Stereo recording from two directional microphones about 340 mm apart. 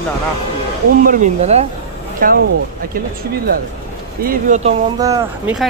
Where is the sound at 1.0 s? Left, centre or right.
Right.